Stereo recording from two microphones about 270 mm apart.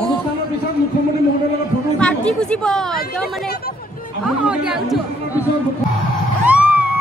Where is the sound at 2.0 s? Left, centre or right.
Centre.